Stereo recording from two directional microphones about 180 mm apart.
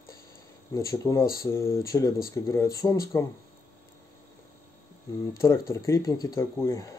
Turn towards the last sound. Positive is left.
turn(degrees=15)  # may be behind; listen again after turning